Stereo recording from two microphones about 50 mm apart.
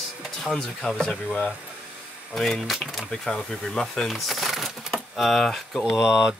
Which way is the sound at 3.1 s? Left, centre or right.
Centre.